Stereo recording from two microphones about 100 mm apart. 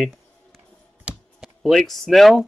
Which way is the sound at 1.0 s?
5° right (ahead or behind).